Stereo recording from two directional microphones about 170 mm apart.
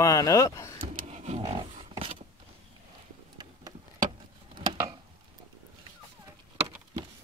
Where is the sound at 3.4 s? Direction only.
25° right (ahead or behind).